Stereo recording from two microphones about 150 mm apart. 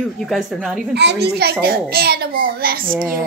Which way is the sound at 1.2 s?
90° right.